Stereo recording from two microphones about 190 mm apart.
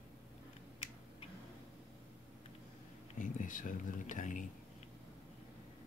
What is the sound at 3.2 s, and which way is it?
Speech, 45° left (ahead or behind).